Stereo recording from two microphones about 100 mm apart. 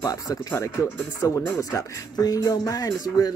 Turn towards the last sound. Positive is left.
turn(degrees=40)  # may be behind; listen again after turning